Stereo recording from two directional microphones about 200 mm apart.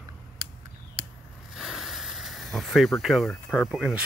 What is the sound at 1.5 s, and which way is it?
Speech, centre (ahead or behind).